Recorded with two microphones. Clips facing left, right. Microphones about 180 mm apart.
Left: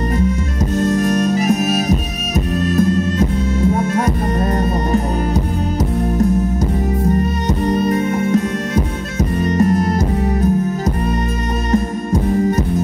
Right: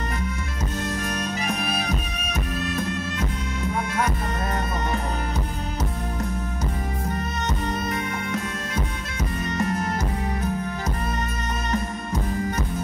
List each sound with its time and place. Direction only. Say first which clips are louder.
0.7 s music: left 14 dB; 40° left (ahead or behind)
3.2 s music: left 12 dB; 30° left (ahead or behind)
7.6 s music: left 15 dB; 35° left (ahead or behind)
9.4 s music: left 11 dB; 40° left (ahead or behind)
12.1 s heart sounds: left 12 dB; 30° left (ahead or behind)